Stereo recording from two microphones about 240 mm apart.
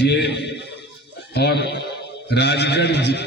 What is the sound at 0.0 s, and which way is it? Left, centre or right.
A man's voice, left.